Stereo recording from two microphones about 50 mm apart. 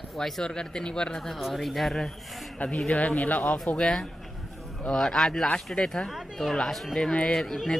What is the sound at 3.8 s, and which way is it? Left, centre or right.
A man's voice, centre.